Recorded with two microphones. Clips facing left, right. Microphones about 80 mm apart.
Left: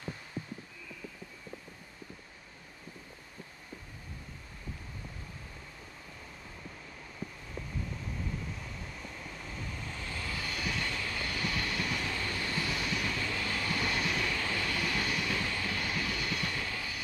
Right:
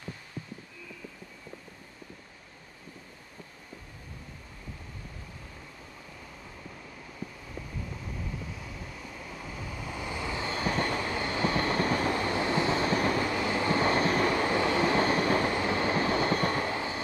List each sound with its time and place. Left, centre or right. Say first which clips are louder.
8.5 s vehicle: right 2 dB; centre; by 13.3 s right
13.3 s train: right 7 dB; right